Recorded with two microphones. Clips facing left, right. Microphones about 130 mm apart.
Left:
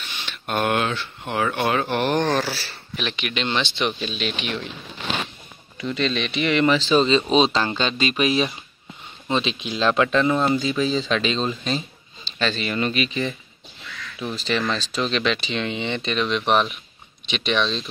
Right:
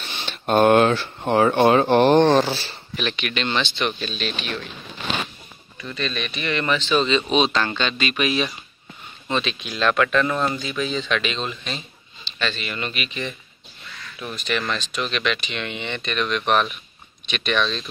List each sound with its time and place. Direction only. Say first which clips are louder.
0.0 s speech: right 4 dB; 35° right (ahead or behind)
3.0 s speech: right 1 dB; 5° left (ahead or behind)
3.6 s speech: left 1 dB; 25° left (ahead or behind)
5.8 s speech: left 4 dB; 20° left (ahead or behind)
6.8 s speech: left 2 dB; 35° left (ahead or behind)